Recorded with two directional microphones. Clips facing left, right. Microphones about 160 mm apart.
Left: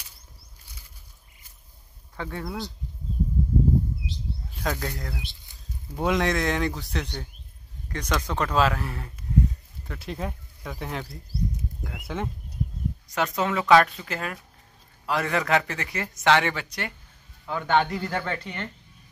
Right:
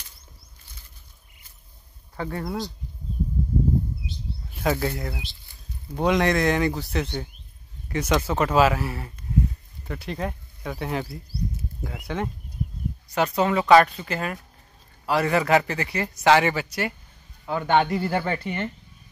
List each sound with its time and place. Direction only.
2.1 s speech: 5° right (ahead or behind)
2.4 s speech: 20° right (ahead or behind)
4.6 s speech: 10° right (ahead or behind)
5.9 s a man's voice: centre (ahead or behind)